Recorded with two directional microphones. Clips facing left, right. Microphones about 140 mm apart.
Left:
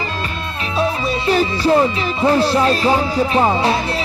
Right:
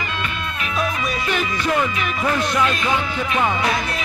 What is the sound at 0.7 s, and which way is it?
Speech, 30° left (ahead or behind).